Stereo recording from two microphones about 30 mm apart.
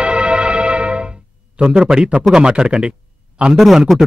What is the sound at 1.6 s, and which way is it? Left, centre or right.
A woman's voice, right.